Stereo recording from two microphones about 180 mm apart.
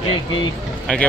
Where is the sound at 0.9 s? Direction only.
5° left (ahead or behind).